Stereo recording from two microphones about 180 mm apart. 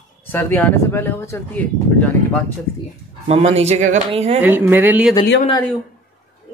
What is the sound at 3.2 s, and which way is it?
A man's voice, 35° right (ahead or behind).